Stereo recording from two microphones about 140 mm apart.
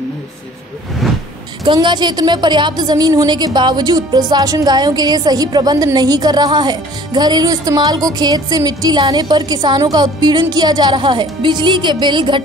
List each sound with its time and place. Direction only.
1.6 s a woman's voice: 35° right (ahead or behind)